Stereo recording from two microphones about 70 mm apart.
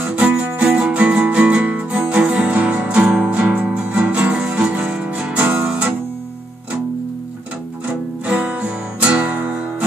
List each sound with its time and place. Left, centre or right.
0.0 s music: right
8.3 s music: centre